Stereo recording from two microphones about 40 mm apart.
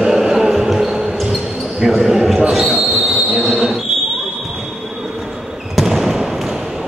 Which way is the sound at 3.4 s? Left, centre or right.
Centre.